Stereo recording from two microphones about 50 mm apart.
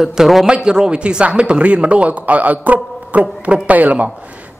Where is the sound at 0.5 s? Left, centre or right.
Centre.